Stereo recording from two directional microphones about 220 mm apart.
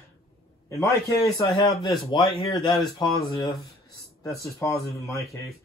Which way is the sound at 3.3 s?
15° left (ahead or behind).